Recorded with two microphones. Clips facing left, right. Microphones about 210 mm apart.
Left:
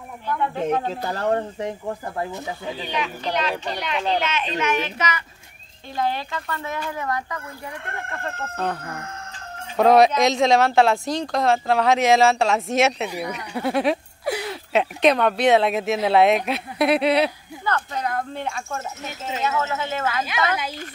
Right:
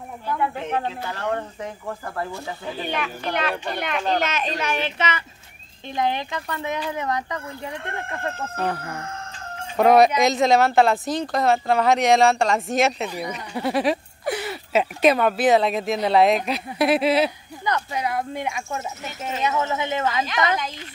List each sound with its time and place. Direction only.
0.3 s speech: 5° right (ahead or behind)
0.8 s speech: 40° left (ahead or behind)
1.6 s speech: 20° left (ahead or behind)
2.8 s speech: 55° right (ahead or behind); by 7.7 s 20° right (ahead or behind)
8.5 s speech: 5° right (ahead or behind)
17.6 s speech: 10° right (ahead or behind)